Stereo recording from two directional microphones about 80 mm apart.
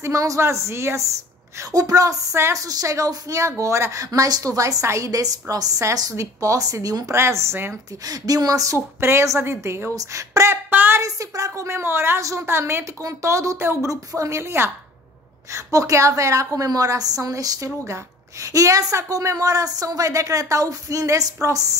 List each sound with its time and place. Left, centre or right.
0.0 s a woman's voice: right
1.7 s a woman's voice: right
7.2 s a woman's voice: right
8.0 s a woman's voice: right
8.7 s a woman's voice: right
10.7 s a sound: right
11.0 s a woman's voice: right